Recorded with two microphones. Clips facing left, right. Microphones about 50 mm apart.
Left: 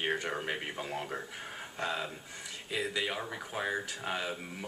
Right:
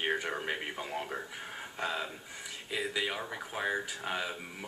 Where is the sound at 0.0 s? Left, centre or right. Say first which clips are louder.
Even; centre.